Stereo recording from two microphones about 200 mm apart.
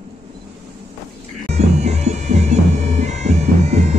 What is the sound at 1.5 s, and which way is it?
Bagpipes, 35° right (ahead or behind).